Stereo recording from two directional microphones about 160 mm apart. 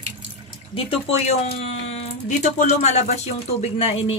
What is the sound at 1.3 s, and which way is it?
Speech, 40° left (ahead or behind).